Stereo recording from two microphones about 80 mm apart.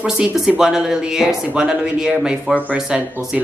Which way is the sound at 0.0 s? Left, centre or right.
Centre.